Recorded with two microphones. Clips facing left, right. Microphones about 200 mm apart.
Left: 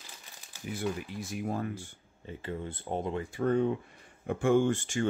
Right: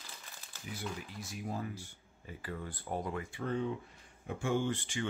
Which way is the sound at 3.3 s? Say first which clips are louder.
Left 10 dB; 50° left (ahead or behind).